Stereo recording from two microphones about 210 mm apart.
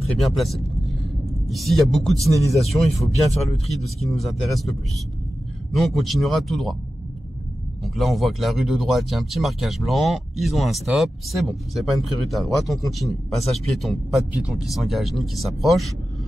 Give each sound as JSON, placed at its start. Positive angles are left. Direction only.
{"t": 0.0, "sound": "speech", "side_deg": 0}
{"t": 5.8, "sound": "speech", "side_deg": 0}
{"t": 7.8, "sound": "speech", "side_deg": 0}